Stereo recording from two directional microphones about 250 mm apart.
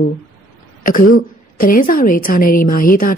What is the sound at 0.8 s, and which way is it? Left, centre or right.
A woman's voice, left.